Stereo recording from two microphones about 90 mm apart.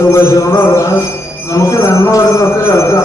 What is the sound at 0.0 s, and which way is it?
Speech, 30° left (ahead or behind).